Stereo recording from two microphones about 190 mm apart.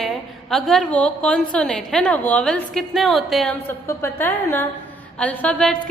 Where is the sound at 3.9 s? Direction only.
15° left (ahead or behind).